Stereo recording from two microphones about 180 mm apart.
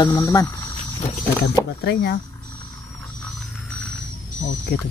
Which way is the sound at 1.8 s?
70° left (ahead or behind).